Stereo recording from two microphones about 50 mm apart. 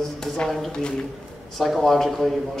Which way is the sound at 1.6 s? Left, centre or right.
Centre.